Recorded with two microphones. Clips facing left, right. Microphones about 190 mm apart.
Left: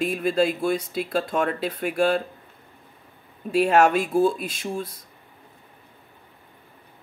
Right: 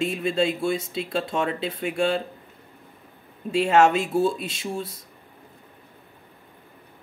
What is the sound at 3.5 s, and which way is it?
Speech, 25° right (ahead or behind).